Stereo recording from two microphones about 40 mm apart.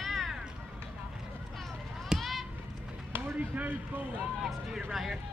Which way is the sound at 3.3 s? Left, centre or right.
Right.